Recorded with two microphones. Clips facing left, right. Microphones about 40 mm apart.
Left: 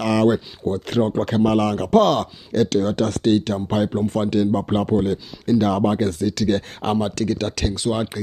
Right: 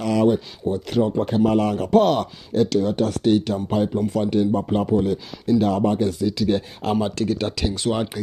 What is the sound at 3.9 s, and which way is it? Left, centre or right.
Speech, left.